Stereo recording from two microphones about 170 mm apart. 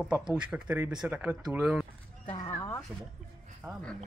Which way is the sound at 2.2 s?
25° left (ahead or behind).